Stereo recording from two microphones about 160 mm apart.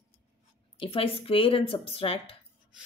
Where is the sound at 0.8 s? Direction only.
35° left (ahead or behind).